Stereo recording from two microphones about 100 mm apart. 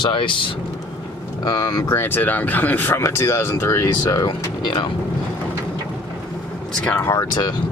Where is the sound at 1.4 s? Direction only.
40° left (ahead or behind).